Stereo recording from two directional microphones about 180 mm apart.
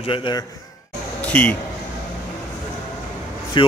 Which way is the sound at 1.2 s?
10° left (ahead or behind).